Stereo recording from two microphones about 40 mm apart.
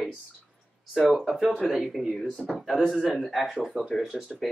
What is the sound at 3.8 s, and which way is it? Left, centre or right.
Speech, centre.